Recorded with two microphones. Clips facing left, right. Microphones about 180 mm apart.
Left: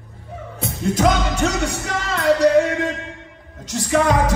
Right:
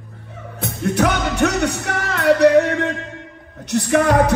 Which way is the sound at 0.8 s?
65° right (ahead or behind).